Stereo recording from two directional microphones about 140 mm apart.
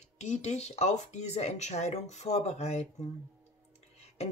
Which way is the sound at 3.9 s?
50° left (ahead or behind).